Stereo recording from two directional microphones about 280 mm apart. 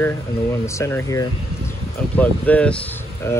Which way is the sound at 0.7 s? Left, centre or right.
Centre.